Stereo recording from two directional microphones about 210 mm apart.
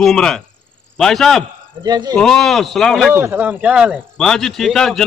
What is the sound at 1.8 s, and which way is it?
Speech, 20° right (ahead or behind).